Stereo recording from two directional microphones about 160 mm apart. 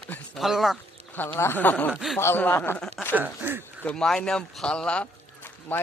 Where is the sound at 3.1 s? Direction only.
10° right (ahead or behind).